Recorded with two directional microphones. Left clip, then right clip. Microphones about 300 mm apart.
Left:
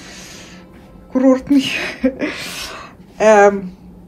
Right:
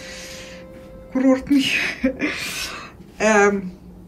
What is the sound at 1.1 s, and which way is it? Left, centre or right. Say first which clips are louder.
Speech: left 5 dB; centre.